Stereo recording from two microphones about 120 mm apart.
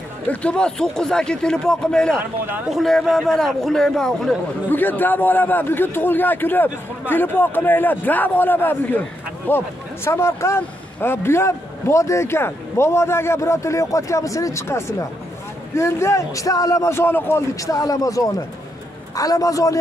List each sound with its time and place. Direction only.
0.3 s a man's voice: 10° left (ahead or behind)
4.6 s a man's voice: 15° left (ahead or behind)